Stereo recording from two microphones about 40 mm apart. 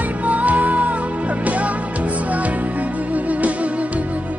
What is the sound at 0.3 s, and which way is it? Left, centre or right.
Music, right.